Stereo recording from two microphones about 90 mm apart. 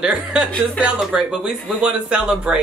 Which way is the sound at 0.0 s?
10° right (ahead or behind).